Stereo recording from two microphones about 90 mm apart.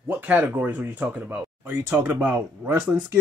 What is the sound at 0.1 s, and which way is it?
Speech, 15° right (ahead or behind).